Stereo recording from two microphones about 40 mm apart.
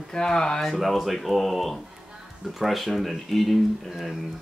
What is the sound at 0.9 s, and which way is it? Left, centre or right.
A woman's voice, centre.